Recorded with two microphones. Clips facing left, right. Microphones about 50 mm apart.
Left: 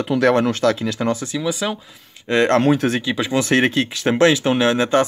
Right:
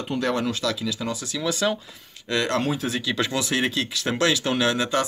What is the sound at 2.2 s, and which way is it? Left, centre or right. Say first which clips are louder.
Speech: left 8 dB; left.